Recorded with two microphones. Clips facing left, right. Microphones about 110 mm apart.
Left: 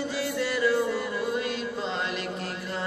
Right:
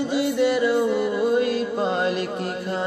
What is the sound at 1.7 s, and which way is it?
Music, 50° right (ahead or behind).